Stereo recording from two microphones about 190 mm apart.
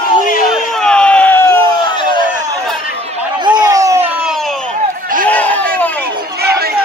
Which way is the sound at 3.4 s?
20° right (ahead or behind).